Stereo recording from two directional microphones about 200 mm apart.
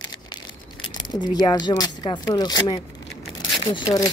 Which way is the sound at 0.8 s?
20° left (ahead or behind).